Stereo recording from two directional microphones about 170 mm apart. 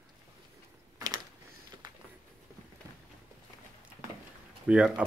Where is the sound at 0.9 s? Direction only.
20° right (ahead or behind).